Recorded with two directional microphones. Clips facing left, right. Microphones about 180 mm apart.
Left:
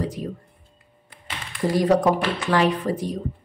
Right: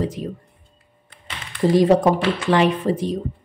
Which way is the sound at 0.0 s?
20° right (ahead or behind).